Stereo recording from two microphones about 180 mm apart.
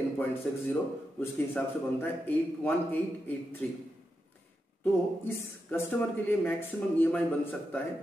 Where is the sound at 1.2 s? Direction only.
10° left (ahead or behind).